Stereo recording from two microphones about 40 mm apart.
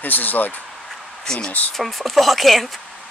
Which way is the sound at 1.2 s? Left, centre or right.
Left.